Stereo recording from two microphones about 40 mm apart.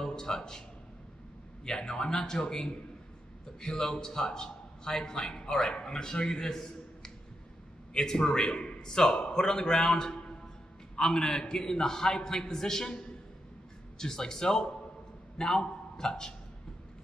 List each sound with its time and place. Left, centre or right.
0.0 s a sound: centre
1.6 s a man's voice: centre
13.9 s a man's voice: centre